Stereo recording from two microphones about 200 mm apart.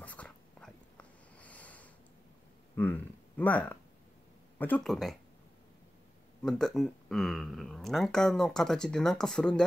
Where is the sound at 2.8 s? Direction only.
10° left (ahead or behind).